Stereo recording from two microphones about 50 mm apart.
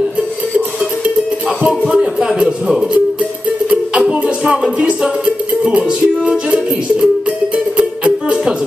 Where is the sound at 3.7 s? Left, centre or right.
Right.